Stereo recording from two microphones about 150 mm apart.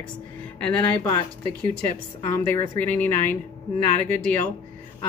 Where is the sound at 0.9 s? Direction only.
25° left (ahead or behind).